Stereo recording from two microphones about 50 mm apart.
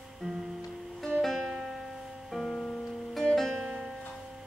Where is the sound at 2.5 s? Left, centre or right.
Left.